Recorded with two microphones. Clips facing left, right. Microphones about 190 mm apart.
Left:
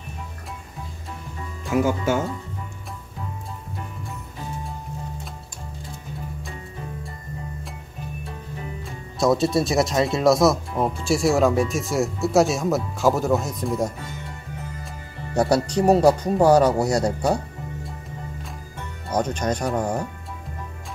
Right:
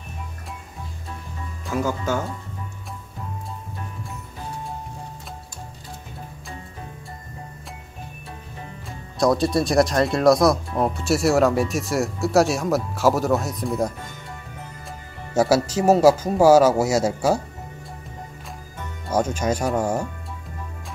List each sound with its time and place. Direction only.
1.7 s speech: 20° left (ahead or behind)
9.2 s speech: centre (ahead or behind)
15.3 s speech: 5° right (ahead or behind)
19.1 s speech: 5° right (ahead or behind)